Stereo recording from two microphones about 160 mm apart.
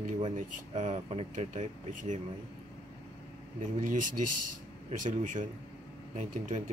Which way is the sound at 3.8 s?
55° right (ahead or behind).